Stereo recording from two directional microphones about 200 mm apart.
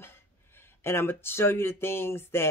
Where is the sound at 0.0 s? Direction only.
10° left (ahead or behind).